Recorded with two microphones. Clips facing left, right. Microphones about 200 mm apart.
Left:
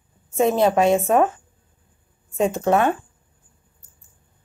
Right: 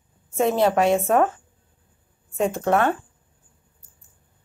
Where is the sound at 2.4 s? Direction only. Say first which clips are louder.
Left 2 dB; 20° left (ahead or behind).